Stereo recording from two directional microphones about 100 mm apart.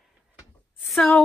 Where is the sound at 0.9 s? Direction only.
5° left (ahead or behind).